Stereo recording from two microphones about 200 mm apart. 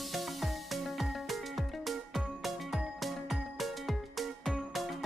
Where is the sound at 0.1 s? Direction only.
Centre (ahead or behind).